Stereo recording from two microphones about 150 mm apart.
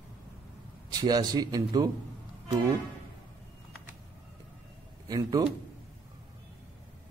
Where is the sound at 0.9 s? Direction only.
25° right (ahead or behind).